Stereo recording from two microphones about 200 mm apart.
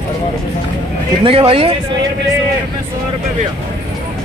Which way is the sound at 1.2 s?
30° right (ahead or behind).